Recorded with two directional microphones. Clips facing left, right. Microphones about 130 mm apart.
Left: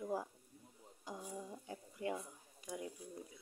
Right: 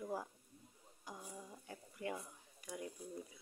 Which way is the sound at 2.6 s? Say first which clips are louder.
Left 2 dB; 20° left (ahead or behind).